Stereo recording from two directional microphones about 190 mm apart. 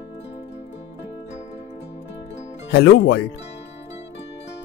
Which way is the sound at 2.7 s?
65° left (ahead or behind).